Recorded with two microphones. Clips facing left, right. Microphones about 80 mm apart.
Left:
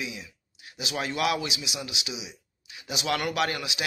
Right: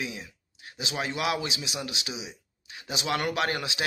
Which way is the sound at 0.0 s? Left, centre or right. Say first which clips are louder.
Right 1 dB; right.